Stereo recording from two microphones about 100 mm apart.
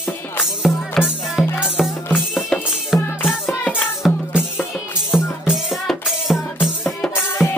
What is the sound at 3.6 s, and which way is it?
Music, 10° left (ahead or behind).